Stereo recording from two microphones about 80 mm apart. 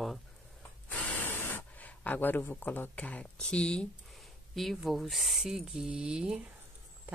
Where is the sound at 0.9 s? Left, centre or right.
Centre.